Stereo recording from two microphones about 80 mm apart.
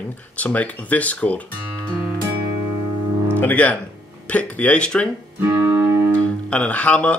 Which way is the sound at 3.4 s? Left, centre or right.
Centre.